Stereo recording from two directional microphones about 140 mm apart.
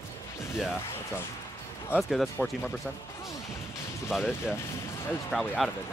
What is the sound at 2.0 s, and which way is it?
Speech, centre (ahead or behind).